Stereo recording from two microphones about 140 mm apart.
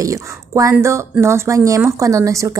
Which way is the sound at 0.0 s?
25° right (ahead or behind).